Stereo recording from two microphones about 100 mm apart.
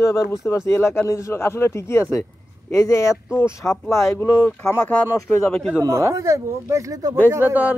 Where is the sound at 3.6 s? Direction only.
20° left (ahead or behind).